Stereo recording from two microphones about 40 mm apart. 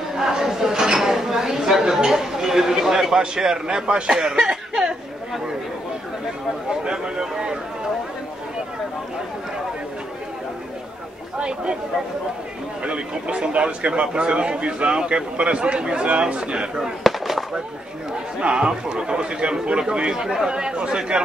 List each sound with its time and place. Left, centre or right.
0.2 s a sound: centre
2.0 s chatter: centre
3.3 s a man's voice: centre
6.7 s speech: centre
11.3 s a man's voice: right
12.8 s a man's voice: right
17.0 s fireworks: centre
18.4 s a man's voice: right